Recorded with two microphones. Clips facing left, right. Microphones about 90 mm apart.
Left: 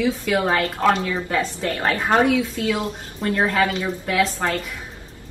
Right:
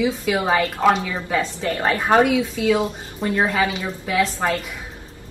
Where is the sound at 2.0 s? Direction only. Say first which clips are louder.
Right 2 dB; 10° right (ahead or behind).